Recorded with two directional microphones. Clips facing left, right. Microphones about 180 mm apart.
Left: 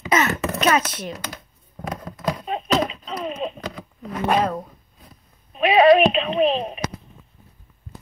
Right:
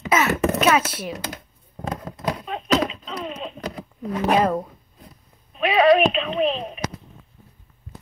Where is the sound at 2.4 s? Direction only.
35° left (ahead or behind).